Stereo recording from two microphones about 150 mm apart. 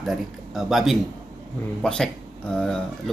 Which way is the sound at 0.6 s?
Centre (ahead or behind).